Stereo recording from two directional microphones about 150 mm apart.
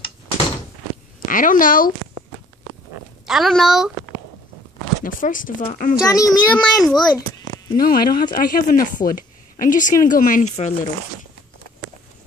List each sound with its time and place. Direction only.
1.2 s a woman's voice: 65° left (ahead or behind)
3.3 s a woman's voice: centre (ahead or behind)
5.0 s speech: 65° left (ahead or behind)
6.0 s a child's voice: 20° left (ahead or behind)
6.5 s a woman's voice: 5° left (ahead or behind)
7.7 s speech: 75° left (ahead or behind); by 10.9 s 50° left (ahead or behind)